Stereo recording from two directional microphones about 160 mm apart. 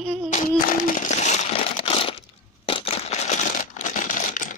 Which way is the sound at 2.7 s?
35° left (ahead or behind).